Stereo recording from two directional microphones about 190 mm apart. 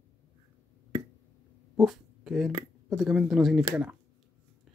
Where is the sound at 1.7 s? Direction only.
Centre (ahead or behind).